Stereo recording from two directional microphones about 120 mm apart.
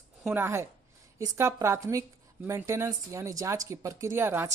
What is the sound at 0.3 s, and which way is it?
Speech, 20° right (ahead or behind).